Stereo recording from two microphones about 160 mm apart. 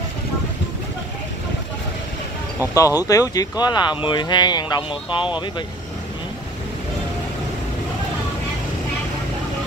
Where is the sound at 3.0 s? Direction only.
20° left (ahead or behind).